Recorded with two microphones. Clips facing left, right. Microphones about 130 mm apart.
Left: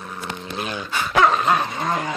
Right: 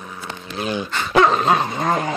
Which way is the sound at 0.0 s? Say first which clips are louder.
Left 1 dB; 5° right (ahead or behind).